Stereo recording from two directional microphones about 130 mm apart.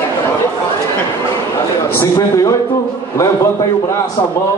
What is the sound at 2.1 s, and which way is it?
Speech, 25° left (ahead or behind).